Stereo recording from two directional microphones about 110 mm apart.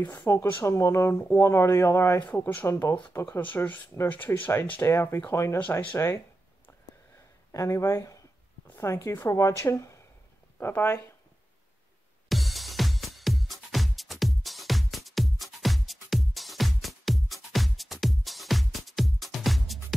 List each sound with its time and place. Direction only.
0.3 s speech: 25° left (ahead or behind)
5.9 s speech: 25° left (ahead or behind)
7.5 s speech: 25° left (ahead or behind)
12.3 s music: centre (ahead or behind)